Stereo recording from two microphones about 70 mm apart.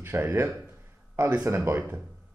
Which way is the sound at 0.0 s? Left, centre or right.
Right.